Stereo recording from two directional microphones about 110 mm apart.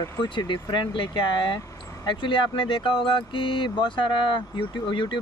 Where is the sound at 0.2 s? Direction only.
45° left (ahead or behind).